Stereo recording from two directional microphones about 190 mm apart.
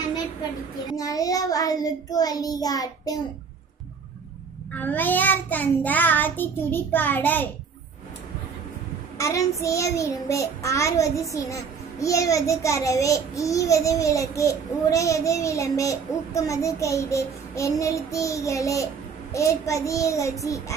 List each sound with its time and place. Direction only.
0.9 s child singing: 20° left (ahead or behind)
4.7 s child singing: 10° left (ahead or behind)
9.2 s child singing: 15° left (ahead or behind)